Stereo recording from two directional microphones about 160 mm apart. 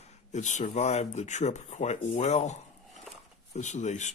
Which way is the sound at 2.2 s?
45° left (ahead or behind).